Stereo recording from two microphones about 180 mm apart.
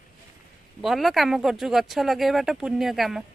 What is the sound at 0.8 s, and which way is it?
Speech, centre (ahead or behind).